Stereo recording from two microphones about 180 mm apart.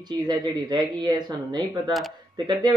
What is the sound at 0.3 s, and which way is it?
A man's voice, 20° right (ahead or behind).